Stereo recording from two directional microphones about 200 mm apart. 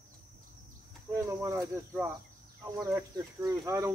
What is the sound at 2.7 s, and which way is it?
Speech, 15° right (ahead or behind).